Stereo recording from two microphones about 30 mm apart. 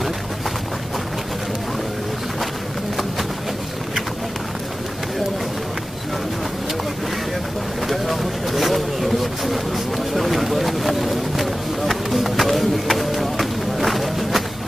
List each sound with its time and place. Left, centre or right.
7.9 s vehicle: centre
10.1 s a sound: centre
12.8 s run: centre